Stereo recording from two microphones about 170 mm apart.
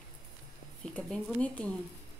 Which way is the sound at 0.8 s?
5° left (ahead or behind).